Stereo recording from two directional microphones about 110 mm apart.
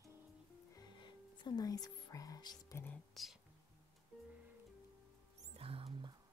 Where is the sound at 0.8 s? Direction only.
45° left (ahead or behind).